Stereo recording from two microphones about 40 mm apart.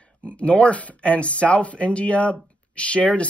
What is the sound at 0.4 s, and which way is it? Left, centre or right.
Speech, left.